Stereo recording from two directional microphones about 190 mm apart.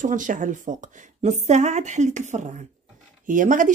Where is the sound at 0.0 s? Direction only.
45° right (ahead or behind).